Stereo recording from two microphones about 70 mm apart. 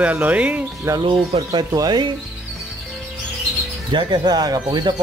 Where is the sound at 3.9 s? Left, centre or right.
Right.